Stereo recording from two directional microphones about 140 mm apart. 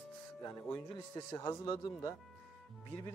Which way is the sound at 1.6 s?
40° left (ahead or behind).